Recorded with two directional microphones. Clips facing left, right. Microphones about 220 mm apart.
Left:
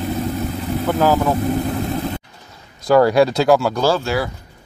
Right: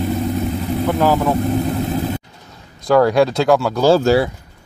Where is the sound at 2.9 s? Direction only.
Centre (ahead or behind).